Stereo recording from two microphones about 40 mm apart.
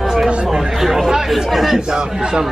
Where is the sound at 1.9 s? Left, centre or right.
Centre.